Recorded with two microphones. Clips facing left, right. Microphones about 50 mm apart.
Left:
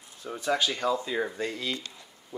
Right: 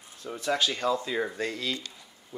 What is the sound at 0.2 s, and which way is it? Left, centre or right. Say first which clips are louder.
Speech: even; centre.